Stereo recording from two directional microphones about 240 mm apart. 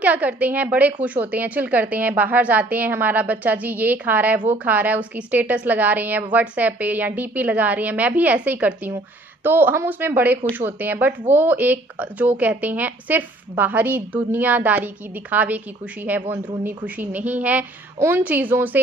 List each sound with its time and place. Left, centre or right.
0.0 s a woman's voice: centre